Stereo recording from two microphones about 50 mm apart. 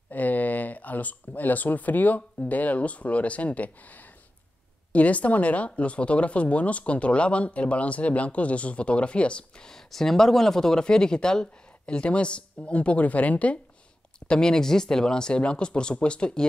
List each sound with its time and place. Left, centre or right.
0.1 s speech: left
14.2 s speech: centre